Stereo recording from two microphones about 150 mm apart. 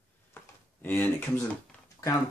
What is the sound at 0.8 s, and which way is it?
Speech, 15° left (ahead or behind).